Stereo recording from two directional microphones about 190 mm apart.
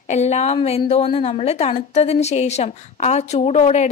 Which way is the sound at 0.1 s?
35° left (ahead or behind).